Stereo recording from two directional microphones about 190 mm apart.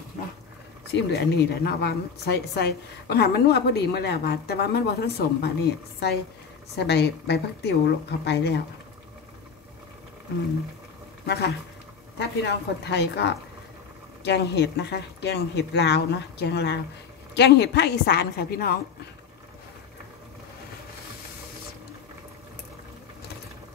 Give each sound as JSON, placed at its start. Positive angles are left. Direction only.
{"t": 0.9, "sound": "a woman's voice", "side_deg": 60}
{"t": 12.2, "sound": "a woman's voice", "side_deg": 65}